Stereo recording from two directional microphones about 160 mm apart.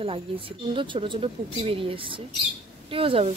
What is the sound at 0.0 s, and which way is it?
Speech, 35° right (ahead or behind).